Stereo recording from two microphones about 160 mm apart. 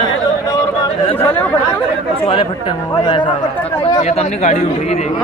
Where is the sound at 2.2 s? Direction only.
35° left (ahead or behind).